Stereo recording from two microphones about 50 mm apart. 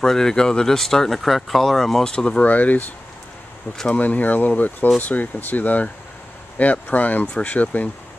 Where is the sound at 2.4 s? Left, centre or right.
Left.